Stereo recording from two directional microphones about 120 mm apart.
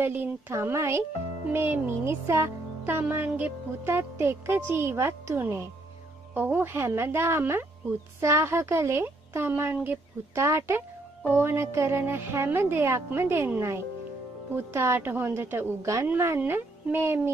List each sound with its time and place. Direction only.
0.0 s music: 20° right (ahead or behind)
14.5 s speech: 20° right (ahead or behind)
15.8 s music: 25° right (ahead or behind)